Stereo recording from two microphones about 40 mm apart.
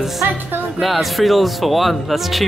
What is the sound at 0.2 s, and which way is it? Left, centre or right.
Music, right.